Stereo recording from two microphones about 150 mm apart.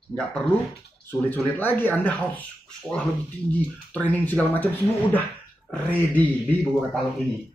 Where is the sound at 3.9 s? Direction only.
10° left (ahead or behind).